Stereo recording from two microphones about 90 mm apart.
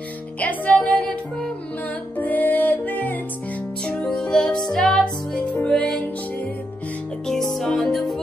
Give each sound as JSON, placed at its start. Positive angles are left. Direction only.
{"t": 0.4, "sound": "music", "side_deg": 15}
{"t": 3.8, "sound": "music", "side_deg": 10}
{"t": 7.2, "sound": "music", "side_deg": 5}